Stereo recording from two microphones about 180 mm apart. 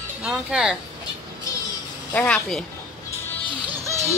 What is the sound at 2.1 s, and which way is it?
Speech, 5° left (ahead or behind).